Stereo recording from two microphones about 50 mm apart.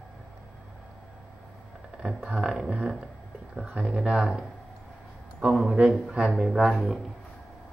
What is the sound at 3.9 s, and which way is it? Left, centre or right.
Speech, centre.